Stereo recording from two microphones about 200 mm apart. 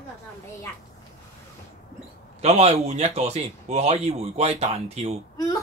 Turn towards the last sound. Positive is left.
turn(degrees=20)  # may be behind; listen again after turning